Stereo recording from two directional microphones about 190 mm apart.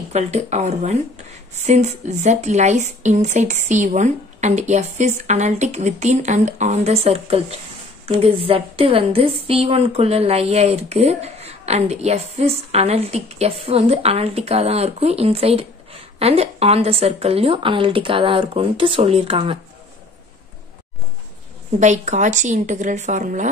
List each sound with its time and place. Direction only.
0.1 s a woman's voice: 35° right (ahead or behind)
21.7 s a woman's voice: 40° right (ahead or behind)